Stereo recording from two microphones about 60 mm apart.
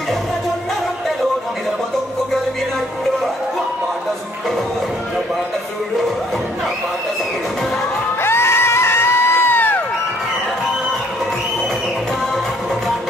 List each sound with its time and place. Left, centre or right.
8.2 s crowd: left